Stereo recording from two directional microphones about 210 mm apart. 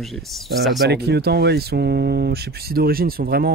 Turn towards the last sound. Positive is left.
turn(degrees=-45)  # may be behind; listen again after turning